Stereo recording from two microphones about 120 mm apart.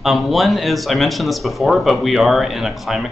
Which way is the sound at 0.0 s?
Centre (ahead or behind).